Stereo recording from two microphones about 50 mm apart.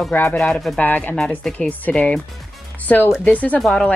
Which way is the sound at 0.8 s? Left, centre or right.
Left.